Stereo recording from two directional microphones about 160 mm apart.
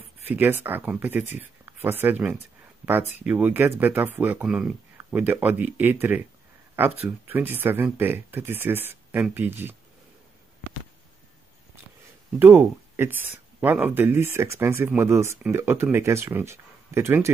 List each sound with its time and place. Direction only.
0.3 s speech: 10° right (ahead or behind)
12.4 s speech: 15° right (ahead or behind)